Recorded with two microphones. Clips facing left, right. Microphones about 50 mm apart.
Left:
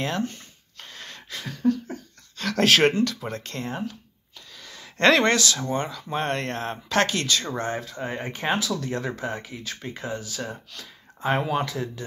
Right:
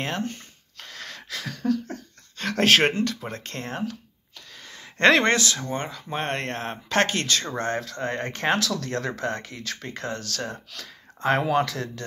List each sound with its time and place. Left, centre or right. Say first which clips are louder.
0.0 s speech: left 1 dB; right
0.7 s a sound: right 2 dB; right
2.3 s speech: even; right
4.6 s speech: right 1 dB; right
7.8 s speech: right 2 dB; right